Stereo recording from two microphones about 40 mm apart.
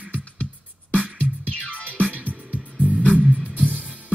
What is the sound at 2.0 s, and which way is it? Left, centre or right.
Music, right.